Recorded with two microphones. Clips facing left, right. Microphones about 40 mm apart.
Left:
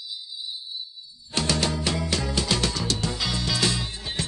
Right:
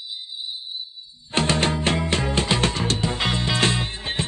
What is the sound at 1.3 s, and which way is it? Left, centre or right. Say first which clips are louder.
Music: right 4 dB; right.